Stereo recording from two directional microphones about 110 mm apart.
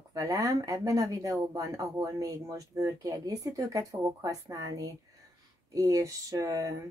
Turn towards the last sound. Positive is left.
turn(degrees=-30)  # may be behind; listen again after turning